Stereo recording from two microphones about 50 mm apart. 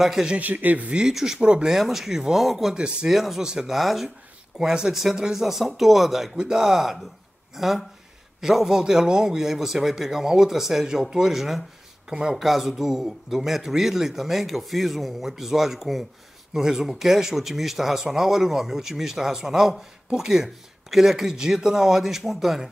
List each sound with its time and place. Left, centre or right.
0.0 s a man's voice: centre
0.4 s speech: right
0.9 s a man's voice: centre
1.8 s speech: centre
2.7 s a man's voice: centre
3.2 s a man's voice: centre
6.3 s a man's voice: centre